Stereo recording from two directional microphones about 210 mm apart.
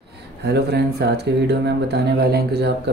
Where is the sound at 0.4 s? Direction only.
50° right (ahead or behind).